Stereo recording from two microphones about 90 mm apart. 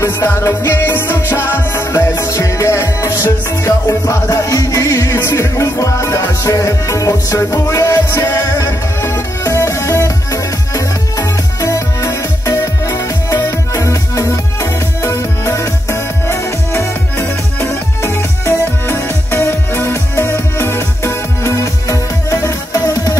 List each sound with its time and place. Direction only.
0.3 s music: 30° left (ahead or behind)